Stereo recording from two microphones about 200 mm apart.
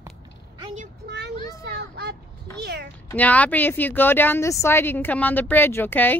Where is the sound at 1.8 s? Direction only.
55° right (ahead or behind).